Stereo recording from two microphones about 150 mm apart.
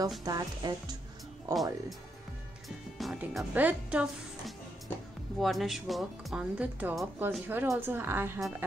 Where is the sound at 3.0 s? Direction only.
Centre (ahead or behind).